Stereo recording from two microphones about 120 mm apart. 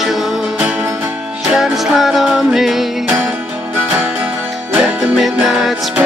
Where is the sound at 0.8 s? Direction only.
25° right (ahead or behind).